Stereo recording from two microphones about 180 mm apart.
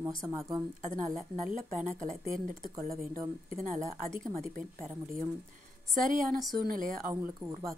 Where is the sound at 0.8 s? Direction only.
45° right (ahead or behind).